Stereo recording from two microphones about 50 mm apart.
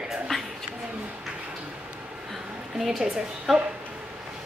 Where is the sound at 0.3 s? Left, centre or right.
Centre.